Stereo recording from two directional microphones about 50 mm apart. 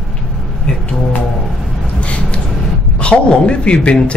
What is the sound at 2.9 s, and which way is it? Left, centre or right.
Speech, left.